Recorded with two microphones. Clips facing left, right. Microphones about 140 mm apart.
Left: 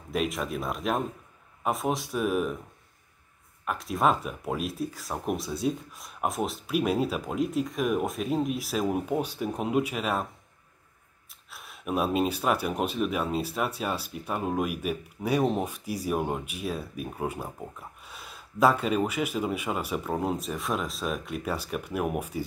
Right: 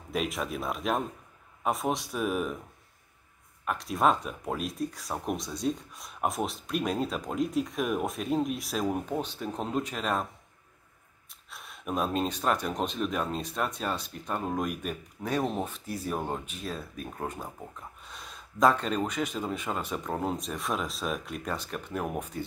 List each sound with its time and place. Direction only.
0.1 s speech: centre (ahead or behind)
3.6 s speech: centre (ahead or behind)
11.5 s speech: centre (ahead or behind)